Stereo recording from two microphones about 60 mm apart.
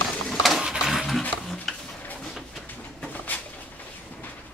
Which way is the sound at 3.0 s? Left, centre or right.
Left.